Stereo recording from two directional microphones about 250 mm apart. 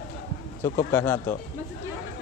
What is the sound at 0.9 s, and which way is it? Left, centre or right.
Speech, centre.